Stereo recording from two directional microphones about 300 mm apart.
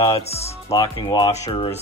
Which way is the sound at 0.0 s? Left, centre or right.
Centre.